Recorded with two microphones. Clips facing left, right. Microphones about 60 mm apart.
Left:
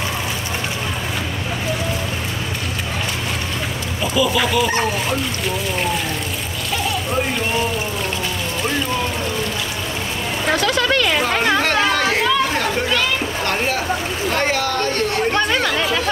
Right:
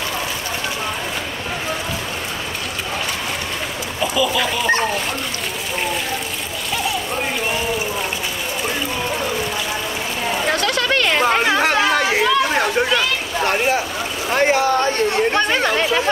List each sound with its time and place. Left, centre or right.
4.1 s dog: centre
11.1 s children playing: centre
12.5 s a sound: centre
14.3 s speech: centre